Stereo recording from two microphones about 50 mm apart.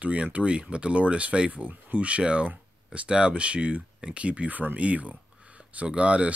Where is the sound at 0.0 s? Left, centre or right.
Right.